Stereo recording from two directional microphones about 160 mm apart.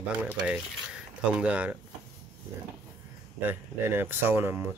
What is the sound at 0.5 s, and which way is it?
Speech, 5° right (ahead or behind).